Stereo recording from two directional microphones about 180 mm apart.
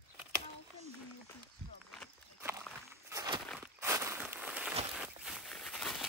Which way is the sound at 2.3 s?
15° right (ahead or behind).